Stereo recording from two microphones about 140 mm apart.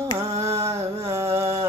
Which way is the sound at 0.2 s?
20° right (ahead or behind).